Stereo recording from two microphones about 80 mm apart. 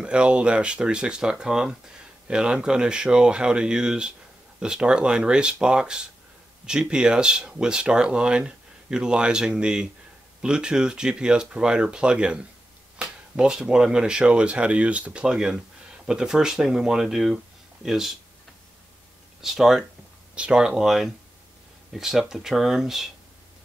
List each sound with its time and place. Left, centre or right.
0.0 s speech: centre
19.4 s speech: centre